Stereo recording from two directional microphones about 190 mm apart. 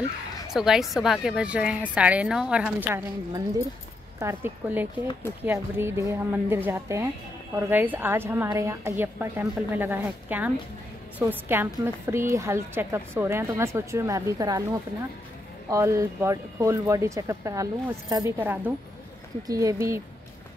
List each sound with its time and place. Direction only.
0.5 s a woman's voice: centre (ahead or behind); by 14.6 s 15° right (ahead or behind)
15.7 s a woman's voice: 15° right (ahead or behind)